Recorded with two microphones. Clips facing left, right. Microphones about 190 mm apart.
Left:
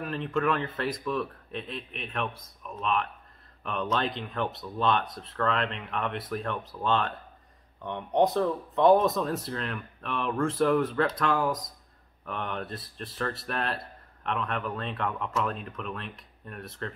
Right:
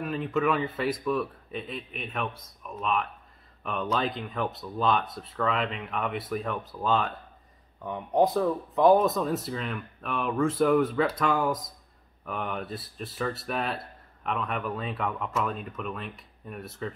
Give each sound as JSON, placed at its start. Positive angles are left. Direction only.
{"t": 0.0, "sound": "speech", "side_deg": -5}